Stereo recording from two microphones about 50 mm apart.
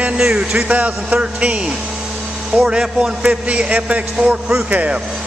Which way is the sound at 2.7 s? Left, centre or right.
Centre.